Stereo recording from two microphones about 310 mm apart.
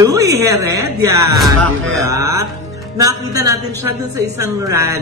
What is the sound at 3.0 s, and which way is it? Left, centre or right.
A woman's voice, centre.